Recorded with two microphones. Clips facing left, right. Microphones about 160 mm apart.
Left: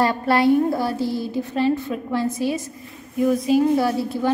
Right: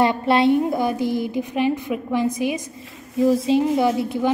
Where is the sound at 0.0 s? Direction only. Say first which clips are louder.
Right 1 dB; 20° right (ahead or behind).